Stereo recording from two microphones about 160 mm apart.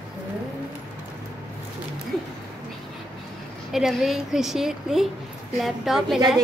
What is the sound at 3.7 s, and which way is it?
A woman's voice, centre (ahead or behind).